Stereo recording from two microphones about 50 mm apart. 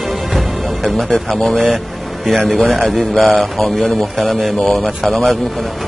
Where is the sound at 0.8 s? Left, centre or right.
Centre.